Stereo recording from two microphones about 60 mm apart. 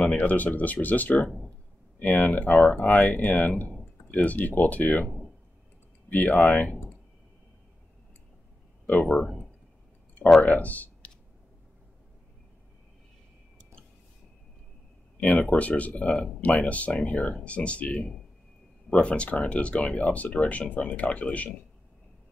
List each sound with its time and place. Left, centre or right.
0.0 s speech: left
6.1 s speech: left
9.1 s speech: centre
10.4 s speech: left
15.1 s speech: left